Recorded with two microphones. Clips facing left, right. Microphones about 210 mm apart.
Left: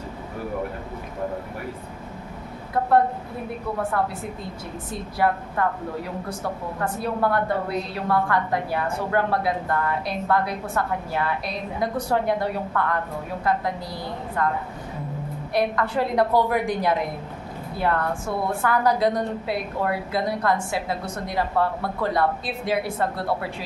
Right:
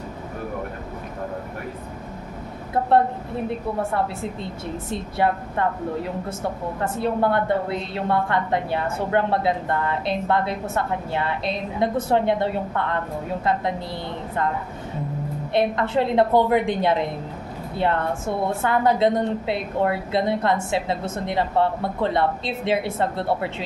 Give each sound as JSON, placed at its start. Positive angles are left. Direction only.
{"t": 3.4, "sound": "a woman's voice", "side_deg": -25}
{"t": 6.8, "sound": "a woman's voice", "side_deg": -25}
{"t": 15.5, "sound": "a woman's voice", "side_deg": -25}